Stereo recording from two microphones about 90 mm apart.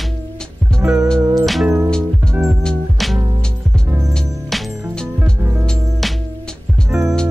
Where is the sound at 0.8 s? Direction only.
30° right (ahead or behind).